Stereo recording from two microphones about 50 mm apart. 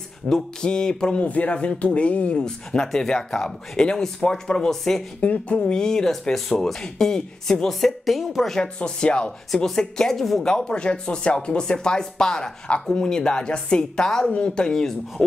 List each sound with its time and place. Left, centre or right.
0.3 s speech: centre
5.2 s speech: left
5.7 s speech: centre
8.5 s speech: centre